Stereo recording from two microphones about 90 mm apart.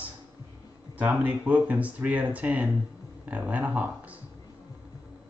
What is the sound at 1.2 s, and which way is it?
Speech, 15° right (ahead or behind).